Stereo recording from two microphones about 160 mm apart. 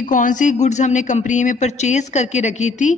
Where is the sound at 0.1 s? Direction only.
55° left (ahead or behind).